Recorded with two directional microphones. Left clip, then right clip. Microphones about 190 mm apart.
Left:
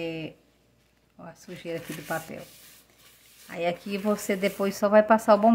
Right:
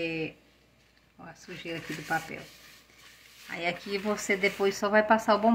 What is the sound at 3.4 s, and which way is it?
Speech, 60° left (ahead or behind).